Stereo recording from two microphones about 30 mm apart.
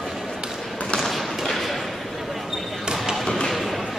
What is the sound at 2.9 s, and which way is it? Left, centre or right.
Basketball bounce, centre.